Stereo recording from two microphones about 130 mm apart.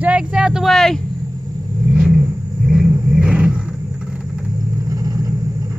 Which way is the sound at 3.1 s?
5° right (ahead or behind).